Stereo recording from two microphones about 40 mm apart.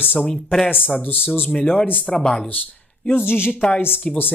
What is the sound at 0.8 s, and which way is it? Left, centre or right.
Speech, left.